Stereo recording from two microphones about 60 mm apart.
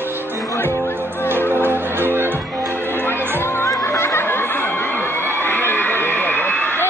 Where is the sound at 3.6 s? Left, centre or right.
Left.